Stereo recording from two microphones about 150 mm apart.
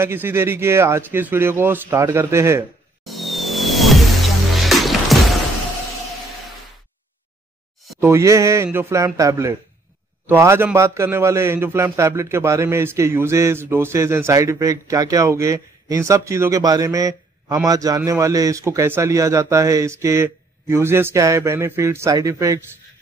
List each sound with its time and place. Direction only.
0.0 s speech: 15° right (ahead or behind)
3.1 s vehicle: centre (ahead or behind)
4.6 s music: centre (ahead or behind)
8.0 s a man's voice: 20° right (ahead or behind)